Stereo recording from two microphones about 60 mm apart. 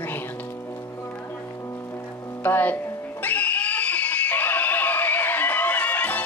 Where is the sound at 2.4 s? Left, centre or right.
Left.